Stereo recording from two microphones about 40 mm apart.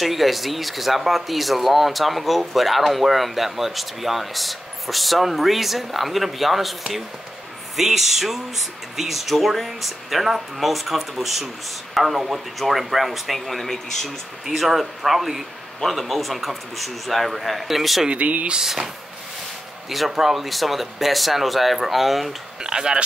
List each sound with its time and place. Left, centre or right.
0.0 s speech: centre
18.1 s speech: right
18.5 s speech: centre
19.9 s speech: centre
22.6 s speech: centre